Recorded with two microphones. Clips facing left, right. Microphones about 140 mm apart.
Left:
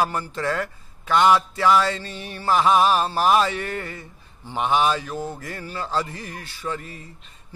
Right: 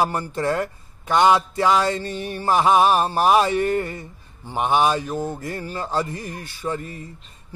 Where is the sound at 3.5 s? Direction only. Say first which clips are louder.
Right 8 dB; 45° right (ahead or behind).